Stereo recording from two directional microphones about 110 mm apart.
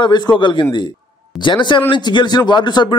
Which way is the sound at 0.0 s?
40° left (ahead or behind).